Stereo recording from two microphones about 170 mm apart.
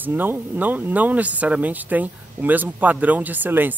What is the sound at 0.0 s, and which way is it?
Speech, 10° right (ahead or behind).